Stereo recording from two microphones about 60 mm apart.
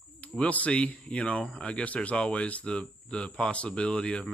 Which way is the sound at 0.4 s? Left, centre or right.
Left.